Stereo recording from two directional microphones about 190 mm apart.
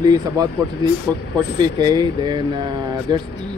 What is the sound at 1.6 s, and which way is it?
Speech, 20° right (ahead or behind).